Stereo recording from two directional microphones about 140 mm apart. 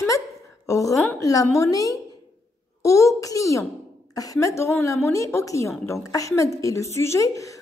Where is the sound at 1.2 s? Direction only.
25° left (ahead or behind).